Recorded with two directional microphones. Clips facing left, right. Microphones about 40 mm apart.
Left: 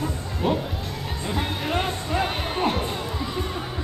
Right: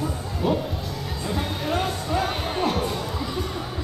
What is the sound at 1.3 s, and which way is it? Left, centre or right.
Music, left.